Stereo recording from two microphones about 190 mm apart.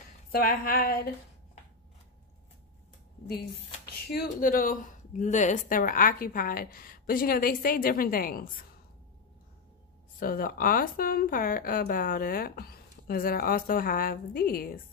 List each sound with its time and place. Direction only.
0.3 s speech: 50° left (ahead or behind)
4.1 s speech: 45° left (ahead or behind)
10.1 s speech: 50° left (ahead or behind)